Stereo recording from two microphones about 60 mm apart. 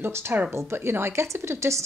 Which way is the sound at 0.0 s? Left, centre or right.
Right.